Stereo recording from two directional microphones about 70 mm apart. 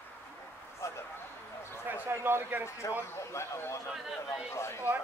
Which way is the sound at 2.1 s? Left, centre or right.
Right.